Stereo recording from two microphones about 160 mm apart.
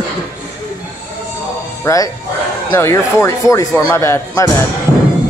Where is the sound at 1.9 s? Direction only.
20° left (ahead or behind).